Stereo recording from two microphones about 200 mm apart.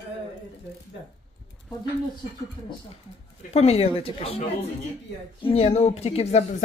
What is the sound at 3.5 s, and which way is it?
Speech, 30° left (ahead or behind).